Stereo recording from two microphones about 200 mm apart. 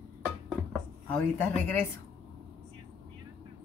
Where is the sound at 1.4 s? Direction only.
10° left (ahead or behind).